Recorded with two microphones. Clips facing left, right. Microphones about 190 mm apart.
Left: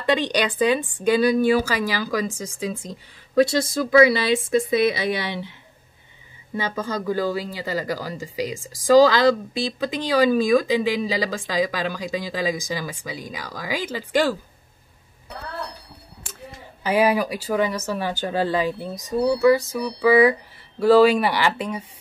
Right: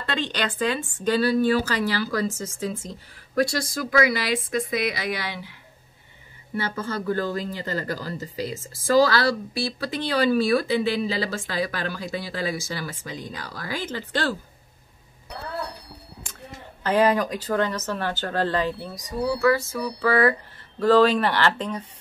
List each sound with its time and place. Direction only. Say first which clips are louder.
0.0 s speech: left 6 dB; 15° left (ahead or behind)
6.5 s speech: left 2 dB; 15° left (ahead or behind)
16.3 s speech: left 2 dB; 10° left (ahead or behind)